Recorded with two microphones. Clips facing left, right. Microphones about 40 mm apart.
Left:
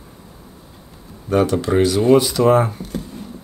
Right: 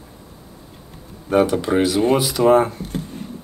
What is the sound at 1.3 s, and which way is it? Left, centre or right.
Speech, centre.